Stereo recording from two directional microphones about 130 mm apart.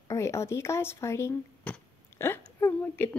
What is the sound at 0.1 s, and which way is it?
Speech, 20° left (ahead or behind).